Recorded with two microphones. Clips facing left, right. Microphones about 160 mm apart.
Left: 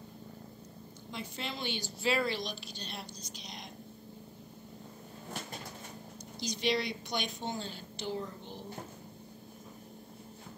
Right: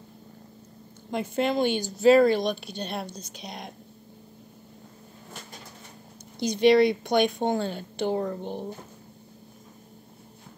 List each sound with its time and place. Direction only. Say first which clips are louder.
1.1 s speech: right 15 dB; 55° right (ahead or behind)
6.4 s a woman's voice: right 14 dB; 55° right (ahead or behind)